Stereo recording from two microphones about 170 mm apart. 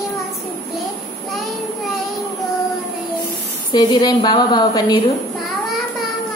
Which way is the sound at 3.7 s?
25° left (ahead or behind).